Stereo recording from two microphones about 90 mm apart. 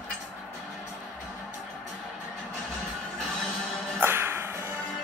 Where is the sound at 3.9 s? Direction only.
25° right (ahead or behind).